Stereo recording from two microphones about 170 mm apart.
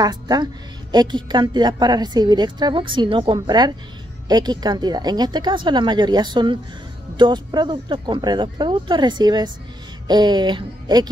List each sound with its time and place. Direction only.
0.0 s a woman's voice: 25° right (ahead or behind)